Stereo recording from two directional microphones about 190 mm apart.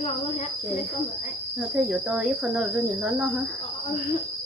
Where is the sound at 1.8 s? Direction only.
5° right (ahead or behind).